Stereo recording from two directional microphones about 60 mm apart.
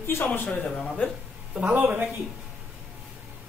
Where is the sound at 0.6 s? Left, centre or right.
Centre.